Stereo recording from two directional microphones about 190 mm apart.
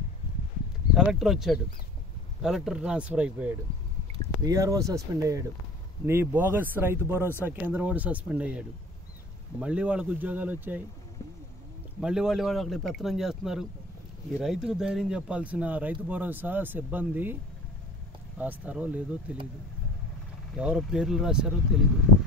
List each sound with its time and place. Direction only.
0.9 s speech: centre (ahead or behind)
4.4 s speech: 20° right (ahead or behind)
12.0 s speech: 5° right (ahead or behind)
18.4 s speech: 10° right (ahead or behind)
20.5 s speech: 5° right (ahead or behind)